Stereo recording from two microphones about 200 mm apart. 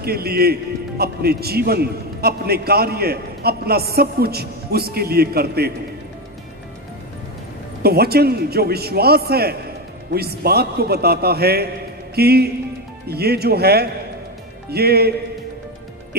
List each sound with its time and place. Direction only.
0.0 s a man's voice: 50° right (ahead or behind)
7.8 s a man's voice: 50° right (ahead or behind)